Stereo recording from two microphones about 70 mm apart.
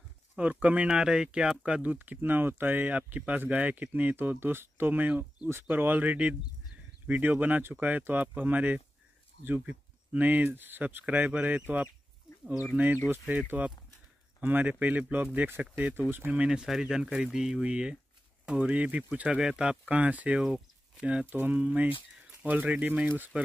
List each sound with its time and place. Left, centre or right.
0.4 s speech: right
16.3 s speech: centre; by 23.4 s right